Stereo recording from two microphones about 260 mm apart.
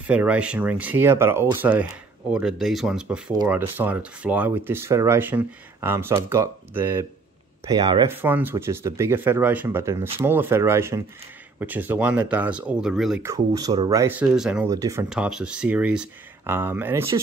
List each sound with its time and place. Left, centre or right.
0.0 s speech: centre